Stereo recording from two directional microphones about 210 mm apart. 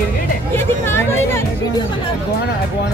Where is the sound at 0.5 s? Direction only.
10° left (ahead or behind).